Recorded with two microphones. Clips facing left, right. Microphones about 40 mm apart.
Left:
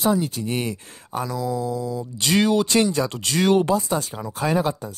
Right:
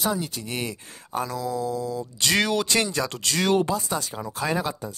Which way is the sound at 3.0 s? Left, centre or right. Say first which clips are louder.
Left 3 dB; centre.